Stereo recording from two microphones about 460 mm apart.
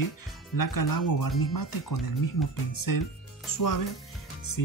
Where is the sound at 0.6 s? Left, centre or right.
Left.